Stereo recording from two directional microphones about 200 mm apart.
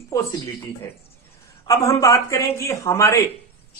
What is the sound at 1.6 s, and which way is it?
Speech, 15° left (ahead or behind).